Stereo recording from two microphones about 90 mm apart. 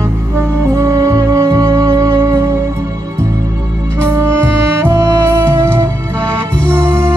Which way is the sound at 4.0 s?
30° right (ahead or behind).